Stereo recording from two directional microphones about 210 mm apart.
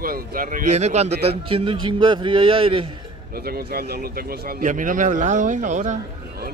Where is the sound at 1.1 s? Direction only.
50° right (ahead or behind).